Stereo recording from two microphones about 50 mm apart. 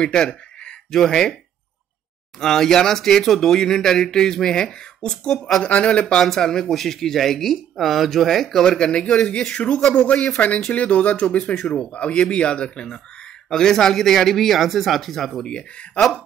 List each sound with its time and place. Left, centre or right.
0.0 s a sound: centre
1.0 s speech: centre
2.4 s speech: centre
5.6 s speech: left
6.1 s speech: centre
10.7 s speech: left; by 15.4 s centre
15.4 s speech: centre